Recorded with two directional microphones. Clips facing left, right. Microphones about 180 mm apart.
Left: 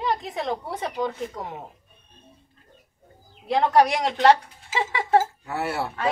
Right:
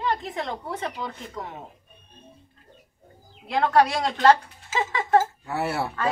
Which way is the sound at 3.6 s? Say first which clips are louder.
Even; 15° left (ahead or behind).